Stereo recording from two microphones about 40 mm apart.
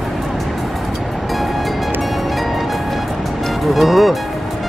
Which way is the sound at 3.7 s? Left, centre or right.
Centre.